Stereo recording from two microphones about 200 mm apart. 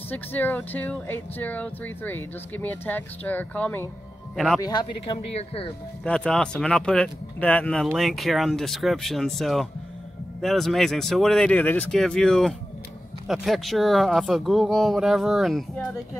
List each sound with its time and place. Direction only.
0.1 s speech: 10° left (ahead or behind)
4.6 s speech: 20° left (ahead or behind)
6.0 s speech: 5° left (ahead or behind)